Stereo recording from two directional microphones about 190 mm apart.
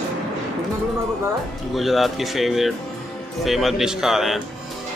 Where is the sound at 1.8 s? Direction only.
Centre (ahead or behind).